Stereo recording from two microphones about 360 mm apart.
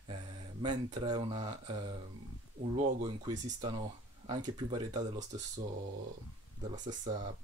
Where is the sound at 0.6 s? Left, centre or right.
Centre.